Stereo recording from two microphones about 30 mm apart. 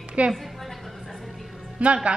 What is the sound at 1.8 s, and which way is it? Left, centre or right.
Speech, right.